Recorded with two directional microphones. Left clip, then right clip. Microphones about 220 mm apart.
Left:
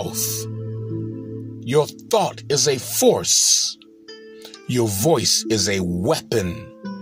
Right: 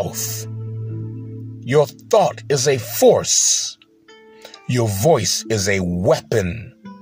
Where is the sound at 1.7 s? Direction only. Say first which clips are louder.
Right 3 dB; 25° right (ahead or behind).